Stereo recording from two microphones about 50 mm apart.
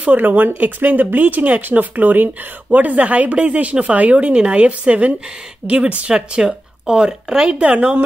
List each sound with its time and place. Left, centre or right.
0.0 s speech: right